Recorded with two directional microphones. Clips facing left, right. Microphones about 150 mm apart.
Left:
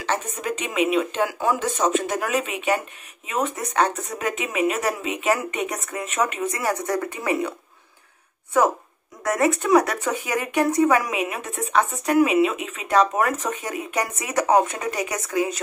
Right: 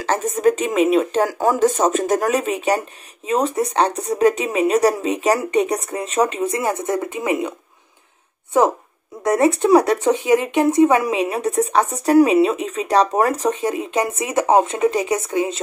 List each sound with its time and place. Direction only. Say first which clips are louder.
0.0 s speech: right 9 dB; 40° right (ahead or behind); by 7.5 s 20° right (ahead or behind)
9.2 s speech: right 5 dB; 30° right (ahead or behind)